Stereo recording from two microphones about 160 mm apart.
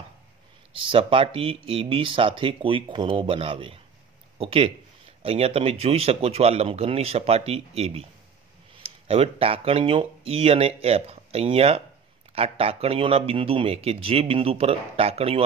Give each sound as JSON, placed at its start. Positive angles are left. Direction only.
{"t": 0.7, "sound": "speech", "side_deg": -35}